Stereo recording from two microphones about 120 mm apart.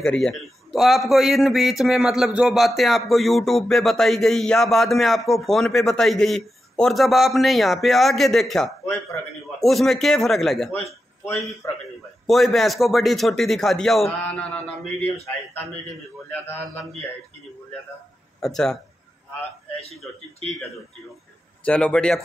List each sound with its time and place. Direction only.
0.0 s a man's voice: 5° left (ahead or behind)
10.9 s a man's voice: 25° left (ahead or behind)
12.3 s a man's voice: centre (ahead or behind)
16.3 s a man's voice: 15° left (ahead or behind)
18.4 s a man's voice: 5° left (ahead or behind)
21.6 s a man's voice: 10° left (ahead or behind)